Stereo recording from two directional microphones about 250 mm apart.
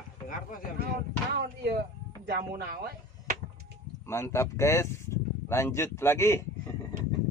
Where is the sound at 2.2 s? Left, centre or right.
Right.